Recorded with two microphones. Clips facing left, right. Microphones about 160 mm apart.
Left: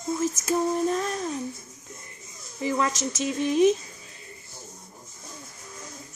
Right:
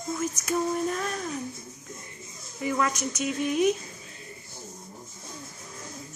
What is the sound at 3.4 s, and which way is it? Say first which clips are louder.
Speech: left 4 dB; 35° left (ahead or behind).